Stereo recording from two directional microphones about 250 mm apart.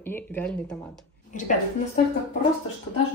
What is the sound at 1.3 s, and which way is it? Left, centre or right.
Speech, left.